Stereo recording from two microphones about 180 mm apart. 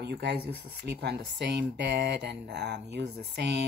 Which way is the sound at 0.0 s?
65° right (ahead or behind).